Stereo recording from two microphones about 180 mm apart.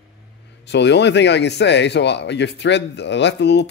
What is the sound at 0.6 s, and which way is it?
Speech, 75° left (ahead or behind).